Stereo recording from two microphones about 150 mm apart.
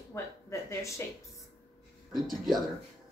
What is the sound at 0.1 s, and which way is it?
Speech, 20° left (ahead or behind).